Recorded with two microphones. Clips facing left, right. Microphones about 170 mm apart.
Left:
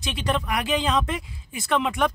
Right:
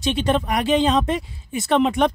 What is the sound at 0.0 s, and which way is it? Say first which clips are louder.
Speech: right 6 dB; 25° right (ahead or behind).